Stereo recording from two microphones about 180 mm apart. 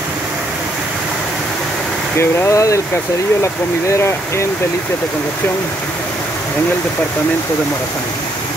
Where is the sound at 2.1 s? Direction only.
15° left (ahead or behind).